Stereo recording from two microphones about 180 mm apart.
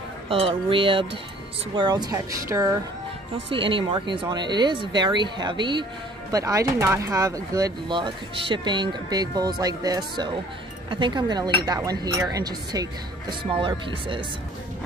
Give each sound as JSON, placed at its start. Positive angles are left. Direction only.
{"t": 0.3, "sound": "speech", "side_deg": -30}
{"t": 3.4, "sound": "speech", "side_deg": -30}